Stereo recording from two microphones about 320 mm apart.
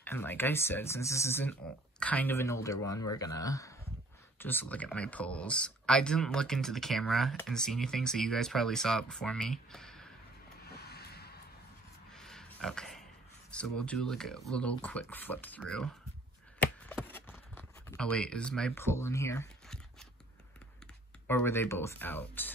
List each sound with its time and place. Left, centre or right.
0.0 s speech: centre
10.7 s vehicle: left
12.1 s pig: centre
13.5 s speech: centre
16.6 s a sound: centre
21.3 s speech: centre